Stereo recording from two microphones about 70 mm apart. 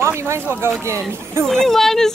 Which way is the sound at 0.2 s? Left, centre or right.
Right.